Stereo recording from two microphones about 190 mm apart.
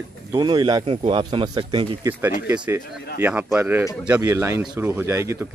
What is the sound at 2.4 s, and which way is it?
Speech, 10° right (ahead or behind).